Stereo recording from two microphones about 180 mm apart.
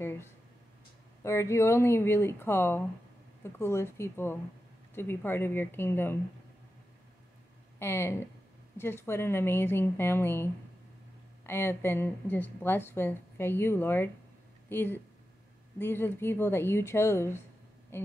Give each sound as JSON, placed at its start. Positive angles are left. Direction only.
{"t": 1.2, "sound": "speech", "side_deg": 15}
{"t": 7.8, "sound": "speech", "side_deg": 15}